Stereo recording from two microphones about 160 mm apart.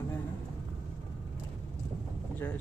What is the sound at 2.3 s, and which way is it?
Speech, 10° left (ahead or behind).